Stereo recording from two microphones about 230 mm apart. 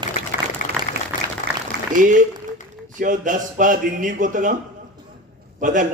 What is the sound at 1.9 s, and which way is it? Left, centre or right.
A man's voice, right.